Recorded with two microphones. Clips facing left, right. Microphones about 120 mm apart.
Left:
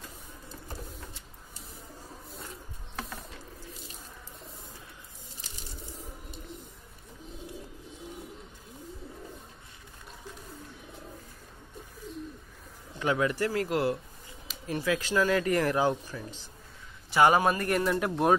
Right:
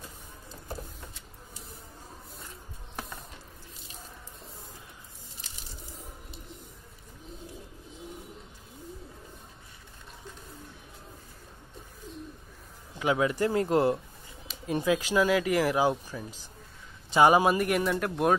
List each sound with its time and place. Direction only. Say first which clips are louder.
13.0 s a man's voice: right 2 dB; 15° right (ahead or behind); by 18.3 s centre (ahead or behind)